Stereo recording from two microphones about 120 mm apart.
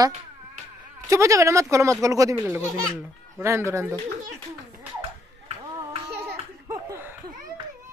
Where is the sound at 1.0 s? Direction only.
25° right (ahead or behind).